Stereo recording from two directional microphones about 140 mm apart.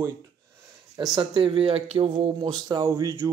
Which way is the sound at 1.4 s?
40° right (ahead or behind).